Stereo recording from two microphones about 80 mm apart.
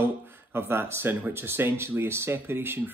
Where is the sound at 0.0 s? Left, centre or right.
Right.